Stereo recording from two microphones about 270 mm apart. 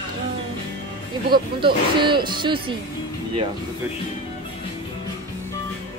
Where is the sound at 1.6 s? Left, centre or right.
Centre.